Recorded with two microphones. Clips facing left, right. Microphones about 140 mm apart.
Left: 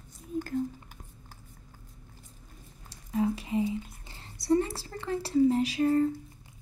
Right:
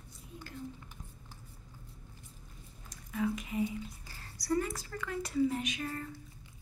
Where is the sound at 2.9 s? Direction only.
30° left (ahead or behind).